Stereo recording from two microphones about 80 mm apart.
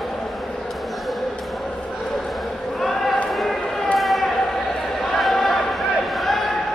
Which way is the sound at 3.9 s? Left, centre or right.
Centre.